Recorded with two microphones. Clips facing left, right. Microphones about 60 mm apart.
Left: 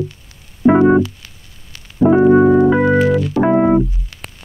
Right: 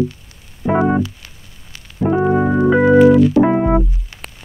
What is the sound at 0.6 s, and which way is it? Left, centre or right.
Music, left.